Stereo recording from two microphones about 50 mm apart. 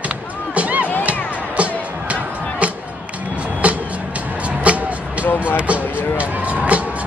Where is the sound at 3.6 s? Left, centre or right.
Right.